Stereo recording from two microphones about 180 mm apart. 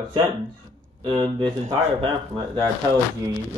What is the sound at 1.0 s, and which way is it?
Speech, 25° right (ahead or behind).